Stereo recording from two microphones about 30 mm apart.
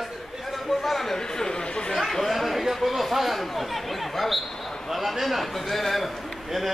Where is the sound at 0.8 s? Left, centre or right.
Centre.